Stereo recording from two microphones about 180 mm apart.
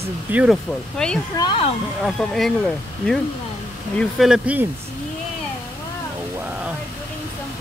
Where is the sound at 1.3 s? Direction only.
25° left (ahead or behind).